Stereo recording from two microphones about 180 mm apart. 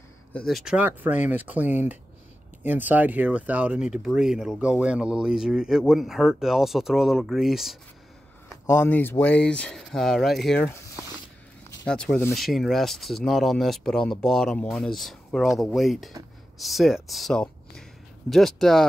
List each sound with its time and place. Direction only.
0.3 s speech: 5° left (ahead or behind)
8.6 s speech: 10° left (ahead or behind)
11.8 s speech: 5° left (ahead or behind)